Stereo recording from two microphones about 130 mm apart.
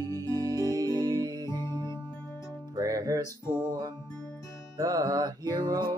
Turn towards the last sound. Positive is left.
turn(degrees=-30)  # may be behind; listen again after turning